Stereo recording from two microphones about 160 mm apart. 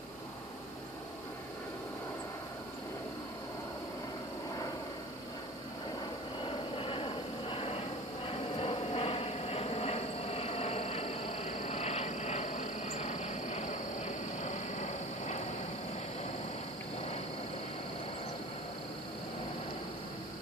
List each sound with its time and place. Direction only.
6.4 s vehicle: 35° left (ahead or behind)
11.6 s frog: 45° left (ahead or behind)